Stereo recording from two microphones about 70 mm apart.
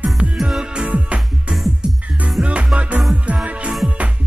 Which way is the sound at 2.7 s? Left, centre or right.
Centre.